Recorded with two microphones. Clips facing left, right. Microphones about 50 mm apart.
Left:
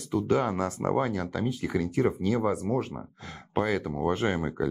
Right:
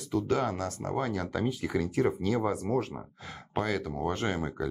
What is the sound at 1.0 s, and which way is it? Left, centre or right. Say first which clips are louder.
Speech: left 2 dB; centre.